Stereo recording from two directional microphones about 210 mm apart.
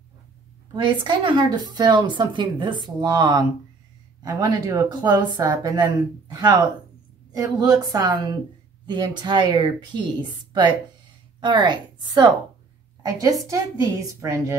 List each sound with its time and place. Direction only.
0.8 s speech: 20° right (ahead or behind)
11.4 s speech: 20° right (ahead or behind)